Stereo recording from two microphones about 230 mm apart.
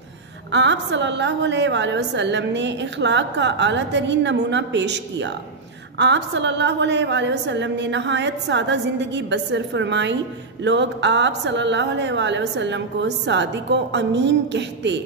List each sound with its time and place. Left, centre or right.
0.5 s a woman's voice: right